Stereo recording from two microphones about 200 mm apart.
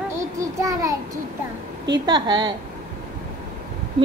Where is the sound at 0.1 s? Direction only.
15° right (ahead or behind).